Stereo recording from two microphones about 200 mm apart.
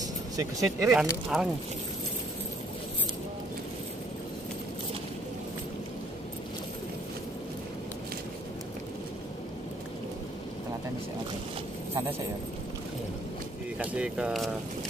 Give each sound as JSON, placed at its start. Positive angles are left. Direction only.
{"t": 0.4, "sound": "speech", "side_deg": -15}
{"t": 0.9, "sound": "speech", "side_deg": -5}
{"t": 11.9, "sound": "a sound", "side_deg": -15}
{"t": 13.7, "sound": "speech", "side_deg": -5}